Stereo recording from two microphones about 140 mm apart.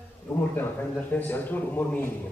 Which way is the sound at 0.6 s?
10° left (ahead or behind).